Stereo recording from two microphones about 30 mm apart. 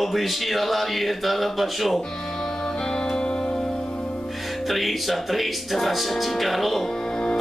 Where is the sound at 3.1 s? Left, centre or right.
Left.